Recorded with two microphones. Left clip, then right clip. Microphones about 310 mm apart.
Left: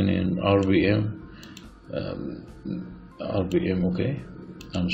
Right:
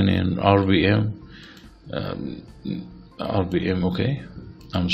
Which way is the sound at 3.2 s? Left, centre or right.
Centre.